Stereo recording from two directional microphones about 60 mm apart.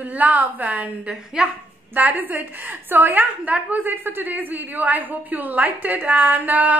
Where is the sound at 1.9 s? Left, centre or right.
Right.